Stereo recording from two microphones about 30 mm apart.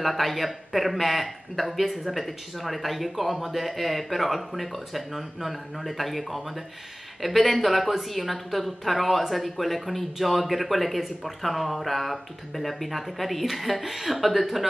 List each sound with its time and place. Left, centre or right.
0.0 s speech: centre